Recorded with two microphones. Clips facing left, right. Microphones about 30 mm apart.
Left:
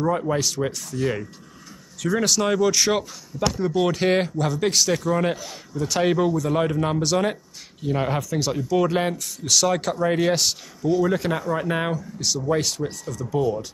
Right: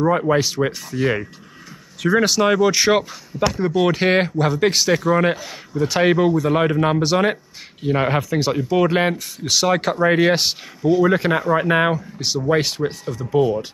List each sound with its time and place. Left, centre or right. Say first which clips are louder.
0.0 s speech: right 5 dB; right